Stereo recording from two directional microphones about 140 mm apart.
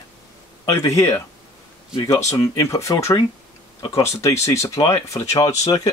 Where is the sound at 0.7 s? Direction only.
20° left (ahead or behind).